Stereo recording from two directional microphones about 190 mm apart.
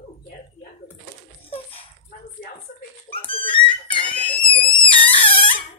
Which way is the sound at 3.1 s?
30° left (ahead or behind).